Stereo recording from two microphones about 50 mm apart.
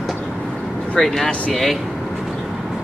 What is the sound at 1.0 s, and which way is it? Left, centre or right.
Speech, centre.